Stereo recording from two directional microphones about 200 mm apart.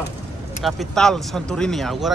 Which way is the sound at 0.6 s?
5° left (ahead or behind).